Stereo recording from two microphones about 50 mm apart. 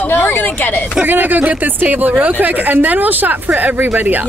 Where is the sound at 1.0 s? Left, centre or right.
Right.